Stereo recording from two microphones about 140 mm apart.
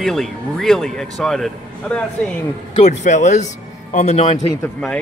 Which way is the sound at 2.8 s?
60° left (ahead or behind).